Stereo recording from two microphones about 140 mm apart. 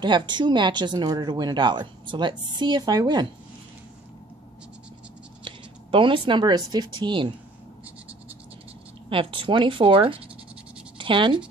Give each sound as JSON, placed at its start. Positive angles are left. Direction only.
{"t": 0.0, "sound": "speech", "side_deg": -35}
{"t": 5.4, "sound": "speech", "side_deg": -40}
{"t": 9.1, "sound": "speech", "side_deg": -40}